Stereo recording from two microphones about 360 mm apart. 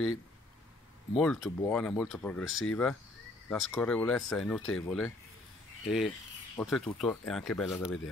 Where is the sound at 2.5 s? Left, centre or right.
Left.